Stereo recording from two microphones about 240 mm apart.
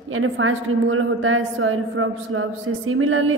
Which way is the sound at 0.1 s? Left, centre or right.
Right.